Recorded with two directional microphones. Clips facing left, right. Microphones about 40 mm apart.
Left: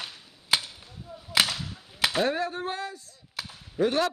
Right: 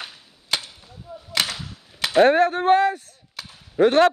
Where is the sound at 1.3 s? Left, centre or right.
Centre.